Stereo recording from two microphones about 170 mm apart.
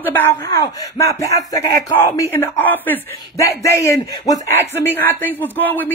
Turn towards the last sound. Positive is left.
turn(degrees=10)  # may be behind; listen again after turning